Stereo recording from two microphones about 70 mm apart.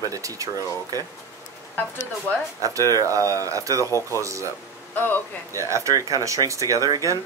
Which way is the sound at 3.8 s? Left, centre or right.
Left.